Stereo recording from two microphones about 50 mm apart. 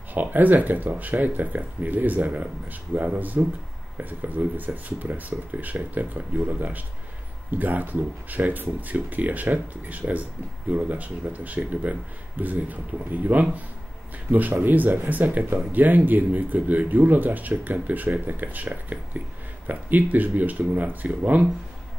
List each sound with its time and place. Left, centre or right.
0.1 s speech: right
14.5 s speech: right